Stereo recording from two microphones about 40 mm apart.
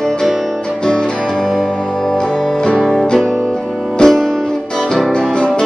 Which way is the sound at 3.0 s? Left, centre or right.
Centre.